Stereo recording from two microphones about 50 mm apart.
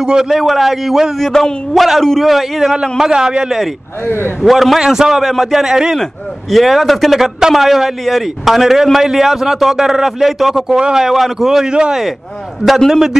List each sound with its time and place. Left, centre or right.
0.0 s speech: centre
0.3 s a man's voice: centre
1.1 s a man's voice: centre
3.0 s speech: centre
4.0 s a man's voice: left
4.4 s a man's voice: centre
4.7 s speech: centre
6.5 s a man's voice: centre
12.6 s a man's voice: centre